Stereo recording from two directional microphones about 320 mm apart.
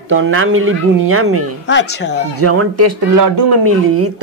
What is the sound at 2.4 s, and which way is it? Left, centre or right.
Speech, right.